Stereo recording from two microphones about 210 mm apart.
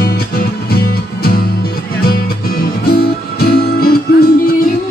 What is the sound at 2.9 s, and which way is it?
Music, 45° left (ahead or behind).